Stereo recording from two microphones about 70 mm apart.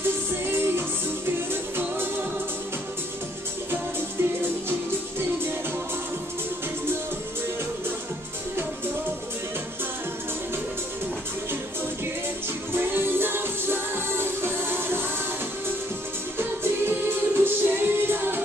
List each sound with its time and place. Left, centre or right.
0.5 s music: right
3.7 s music: right
12.7 s music: right
16.3 s music: right